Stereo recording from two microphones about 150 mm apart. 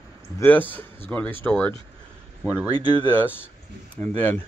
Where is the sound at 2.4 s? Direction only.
10° right (ahead or behind).